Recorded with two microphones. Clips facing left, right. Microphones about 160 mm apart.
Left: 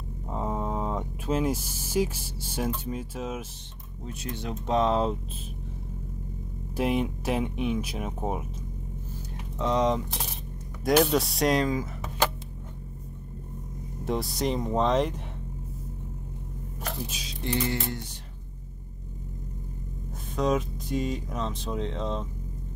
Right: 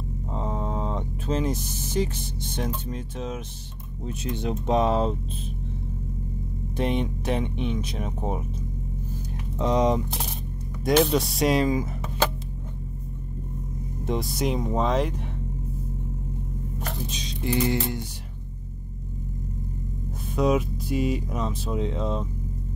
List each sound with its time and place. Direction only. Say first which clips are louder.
0.3 s speech: even; 5° left (ahead or behind)
4.0 s speech: right 5 dB; 20° right (ahead or behind)
6.8 s speech: even; 5° left (ahead or behind)
9.6 s speech: right 3 dB; 15° right (ahead or behind)
10.8 s speech: right 1 dB; centre (ahead or behind)
14.0 s speech: right 1 dB; centre (ahead or behind)
16.8 s a sound: even; 5° left (ahead or behind)
17.4 s speech: right 4 dB; 10° right (ahead or behind)
20.3 s speech: right 3 dB; 10° right (ahead or behind)